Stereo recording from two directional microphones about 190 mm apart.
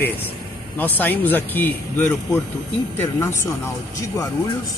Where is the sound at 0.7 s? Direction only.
10° left (ahead or behind).